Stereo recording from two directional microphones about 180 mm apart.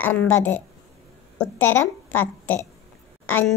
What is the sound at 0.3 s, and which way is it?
A child's voice, 10° left (ahead or behind).